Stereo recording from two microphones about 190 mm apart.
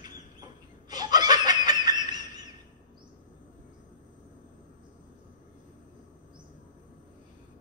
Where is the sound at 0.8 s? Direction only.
20° right (ahead or behind).